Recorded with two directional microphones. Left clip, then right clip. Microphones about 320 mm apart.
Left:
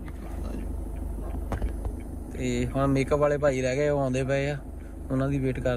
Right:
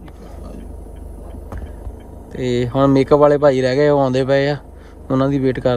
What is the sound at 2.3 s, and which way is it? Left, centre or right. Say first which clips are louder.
Speech: right 11 dB; right.